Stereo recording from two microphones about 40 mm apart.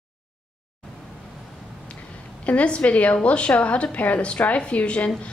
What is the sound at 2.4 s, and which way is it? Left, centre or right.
A woman's voice, left.